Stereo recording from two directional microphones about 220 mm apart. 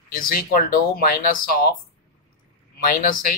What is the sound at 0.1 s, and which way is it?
Speech, 40° left (ahead or behind).